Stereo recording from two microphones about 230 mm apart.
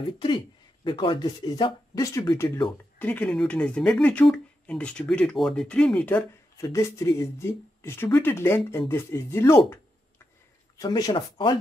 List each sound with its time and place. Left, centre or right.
0.0 s speech: left
9.6 s a sound: centre
10.8 s speech: centre